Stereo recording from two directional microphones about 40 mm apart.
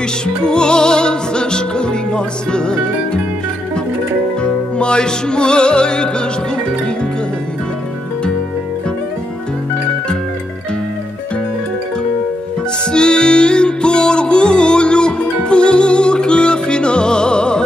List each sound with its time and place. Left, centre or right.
0.4 s music: left
4.4 s music: left
12.9 s music: left